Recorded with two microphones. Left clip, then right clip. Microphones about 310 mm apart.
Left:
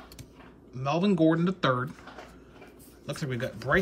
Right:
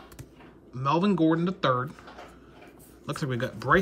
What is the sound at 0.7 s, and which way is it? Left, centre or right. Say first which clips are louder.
Speech: right 2 dB; centre.